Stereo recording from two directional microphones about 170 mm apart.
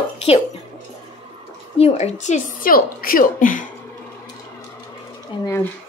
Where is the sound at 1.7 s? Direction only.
35° left (ahead or behind).